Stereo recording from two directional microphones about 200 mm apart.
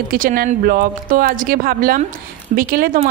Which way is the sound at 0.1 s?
45° right (ahead or behind).